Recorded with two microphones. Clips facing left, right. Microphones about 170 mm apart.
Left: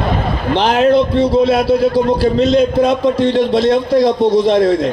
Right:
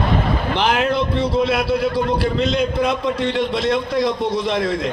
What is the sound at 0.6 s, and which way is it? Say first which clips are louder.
Speech: left 6 dB; 40° left (ahead or behind).